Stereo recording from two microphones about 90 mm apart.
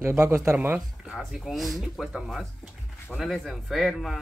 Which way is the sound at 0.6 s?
15° right (ahead or behind).